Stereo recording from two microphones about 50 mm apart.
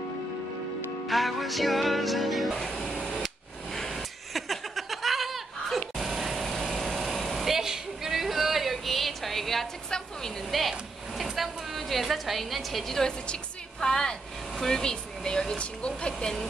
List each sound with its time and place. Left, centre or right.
1.0 s music: centre
2.6 s printer: centre
3.7 s a sound: centre
10.7 s speech: centre
13.3 s a sound: centre
14.6 s speech: centre
16.1 s speech: centre